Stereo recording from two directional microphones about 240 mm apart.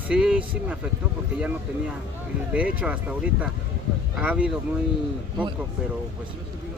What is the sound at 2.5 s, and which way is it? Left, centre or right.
Speech, centre.